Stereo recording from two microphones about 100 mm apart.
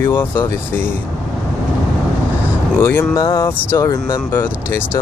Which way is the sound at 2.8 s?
25° left (ahead or behind).